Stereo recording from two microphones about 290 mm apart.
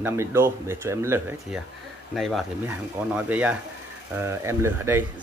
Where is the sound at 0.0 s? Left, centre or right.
Centre.